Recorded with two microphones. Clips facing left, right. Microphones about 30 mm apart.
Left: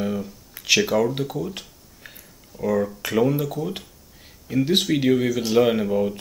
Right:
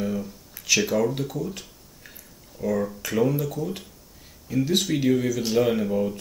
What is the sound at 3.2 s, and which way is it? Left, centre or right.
Speech, centre.